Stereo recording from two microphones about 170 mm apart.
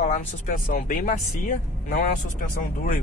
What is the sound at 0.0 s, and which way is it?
Speech, 45° left (ahead or behind).